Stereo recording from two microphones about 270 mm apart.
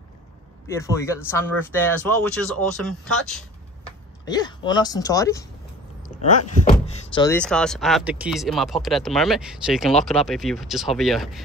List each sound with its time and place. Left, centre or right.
0.7 s speech: centre
4.3 s speech: centre
6.6 s a sound: left
7.3 s speech: centre